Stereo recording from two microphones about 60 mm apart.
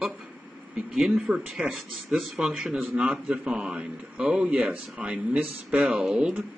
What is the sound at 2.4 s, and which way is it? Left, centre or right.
A man's voice, centre.